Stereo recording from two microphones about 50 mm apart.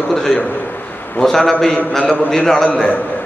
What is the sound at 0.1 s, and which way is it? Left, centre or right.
A man's voice, centre.